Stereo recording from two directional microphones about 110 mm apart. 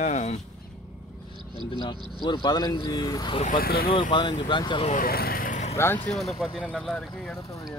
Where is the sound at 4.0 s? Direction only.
45° left (ahead or behind).